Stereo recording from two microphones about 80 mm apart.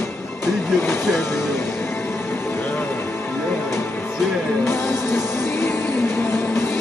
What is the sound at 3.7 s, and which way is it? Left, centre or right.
Music, left.